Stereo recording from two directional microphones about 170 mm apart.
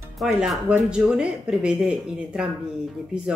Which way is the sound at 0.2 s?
5° right (ahead or behind).